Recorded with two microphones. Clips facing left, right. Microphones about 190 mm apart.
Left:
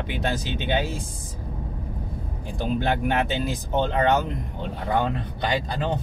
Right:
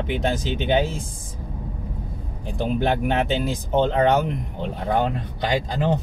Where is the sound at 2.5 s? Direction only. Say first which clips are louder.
Right 3 dB; 20° right (ahead or behind).